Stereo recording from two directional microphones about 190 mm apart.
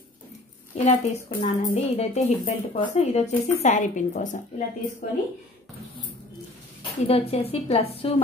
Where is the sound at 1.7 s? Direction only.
35° left (ahead or behind).